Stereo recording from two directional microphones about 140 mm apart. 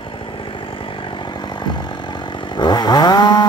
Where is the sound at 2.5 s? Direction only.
30° left (ahead or behind).